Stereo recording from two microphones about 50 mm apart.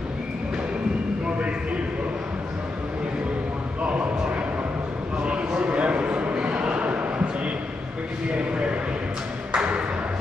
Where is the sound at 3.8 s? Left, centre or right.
Right.